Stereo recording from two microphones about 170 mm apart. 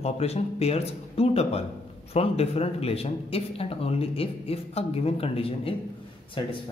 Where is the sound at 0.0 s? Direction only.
40° left (ahead or behind).